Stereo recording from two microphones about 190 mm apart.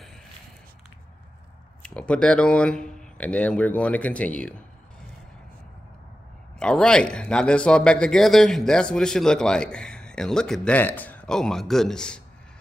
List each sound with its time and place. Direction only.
1.8 s speech: 5° left (ahead or behind)
6.6 s speech: 5° left (ahead or behind)